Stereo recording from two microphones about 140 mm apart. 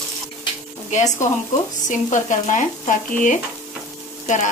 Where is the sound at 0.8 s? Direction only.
60° left (ahead or behind).